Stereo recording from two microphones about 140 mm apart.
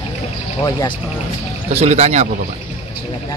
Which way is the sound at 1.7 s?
50° right (ahead or behind).